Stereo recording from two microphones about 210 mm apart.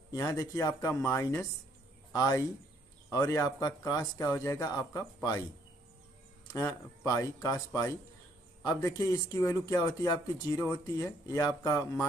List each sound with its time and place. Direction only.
0.1 s speech: 15° left (ahead or behind)
7.1 s speech: 15° left (ahead or behind)